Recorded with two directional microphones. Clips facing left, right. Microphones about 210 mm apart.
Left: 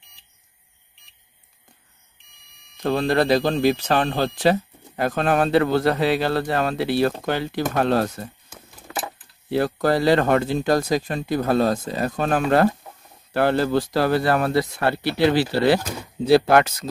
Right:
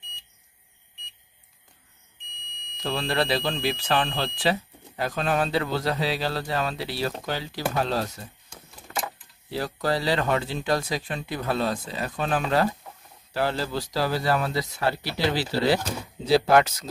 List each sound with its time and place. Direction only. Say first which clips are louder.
2.8 s speech: left 7 dB; 45° left (ahead or behind)
9.5 s speech: left 7 dB; 55° left (ahead or behind)